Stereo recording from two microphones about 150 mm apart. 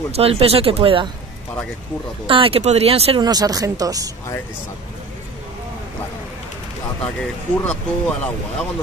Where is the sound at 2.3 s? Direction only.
35° right (ahead or behind).